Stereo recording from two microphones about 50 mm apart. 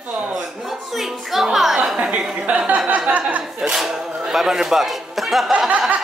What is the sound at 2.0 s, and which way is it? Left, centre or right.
Speech, centre.